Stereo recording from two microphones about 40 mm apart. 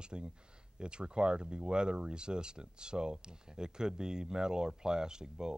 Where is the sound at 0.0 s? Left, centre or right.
Right.